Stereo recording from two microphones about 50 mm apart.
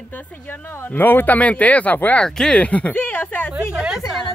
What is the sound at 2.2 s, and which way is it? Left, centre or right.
Speech, centre.